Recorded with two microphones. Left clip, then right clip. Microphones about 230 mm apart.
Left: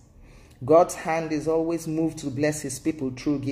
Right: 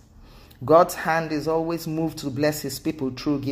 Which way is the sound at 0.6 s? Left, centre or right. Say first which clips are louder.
Right 2 dB; right.